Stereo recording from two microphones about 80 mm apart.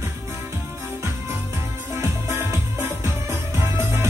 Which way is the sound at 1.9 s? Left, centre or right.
Right.